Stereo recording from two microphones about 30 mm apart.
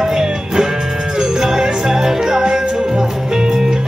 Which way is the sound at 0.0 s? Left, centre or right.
Right.